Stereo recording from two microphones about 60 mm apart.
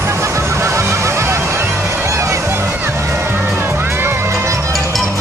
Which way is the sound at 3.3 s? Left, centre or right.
Right.